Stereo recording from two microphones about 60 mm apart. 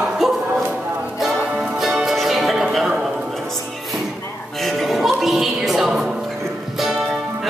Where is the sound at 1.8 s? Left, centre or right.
Centre.